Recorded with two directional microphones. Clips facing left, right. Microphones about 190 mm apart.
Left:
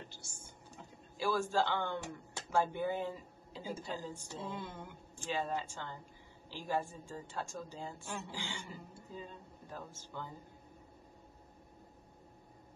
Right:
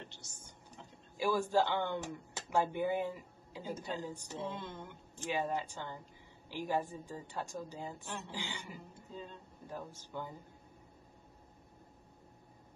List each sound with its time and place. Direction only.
0.1 s a sound: 10° left (ahead or behind)
0.7 s a woman's voice: 15° right (ahead or behind)
4.5 s speech: 10° left (ahead or behind)
5.3 s a woman's voice: 15° right (ahead or behind)
9.1 s speech: 10° left (ahead or behind)
9.7 s a woman's voice: 15° right (ahead or behind)